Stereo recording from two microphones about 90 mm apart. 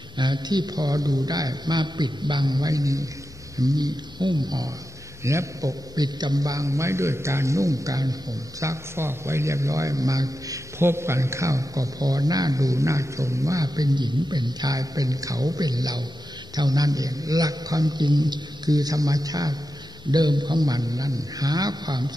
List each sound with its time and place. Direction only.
0.2 s a man's voice: 55° right (ahead or behind)
5.2 s a man's voice: 35° right (ahead or behind)
10.8 s a man's voice: 30° right (ahead or behind); by 22.1 s 50° right (ahead or behind)